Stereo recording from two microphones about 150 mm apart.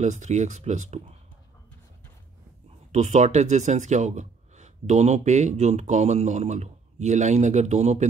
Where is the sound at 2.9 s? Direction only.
50° right (ahead or behind).